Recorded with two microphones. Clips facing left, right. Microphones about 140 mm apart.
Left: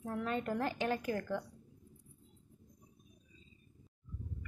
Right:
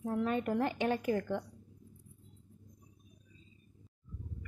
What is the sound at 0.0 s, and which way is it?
A woman's voice, 15° right (ahead or behind).